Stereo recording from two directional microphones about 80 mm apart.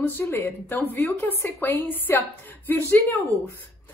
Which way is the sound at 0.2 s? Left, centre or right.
Left.